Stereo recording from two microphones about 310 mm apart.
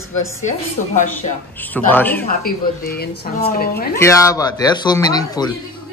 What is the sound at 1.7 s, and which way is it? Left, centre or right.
Speech, centre.